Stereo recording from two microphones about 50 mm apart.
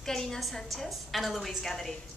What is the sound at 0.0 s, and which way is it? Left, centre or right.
A woman's voice, centre.